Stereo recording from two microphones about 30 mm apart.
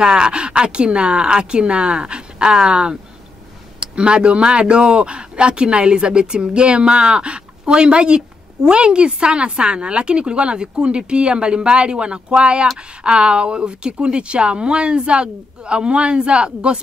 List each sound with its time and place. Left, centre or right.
0.0 s speech: right